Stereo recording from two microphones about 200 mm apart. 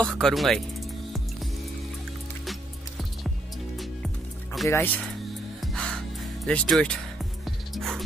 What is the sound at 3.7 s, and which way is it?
Music, centre (ahead or behind).